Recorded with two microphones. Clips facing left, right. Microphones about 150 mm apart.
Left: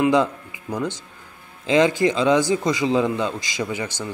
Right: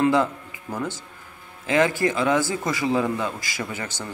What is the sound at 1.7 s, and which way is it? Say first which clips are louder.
A man's voice: left 3 dB; 20° left (ahead or behind).